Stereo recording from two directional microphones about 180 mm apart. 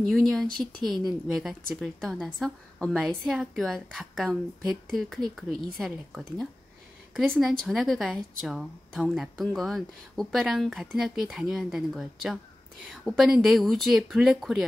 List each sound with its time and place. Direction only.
0.1 s speech: centre (ahead or behind)
7.3 s speech: centre (ahead or behind)